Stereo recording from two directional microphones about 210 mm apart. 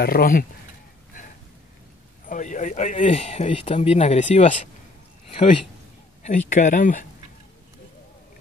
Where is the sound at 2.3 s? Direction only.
35° left (ahead or behind).